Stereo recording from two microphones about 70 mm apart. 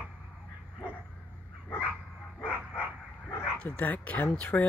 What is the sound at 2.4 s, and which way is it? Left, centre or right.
Dog, centre.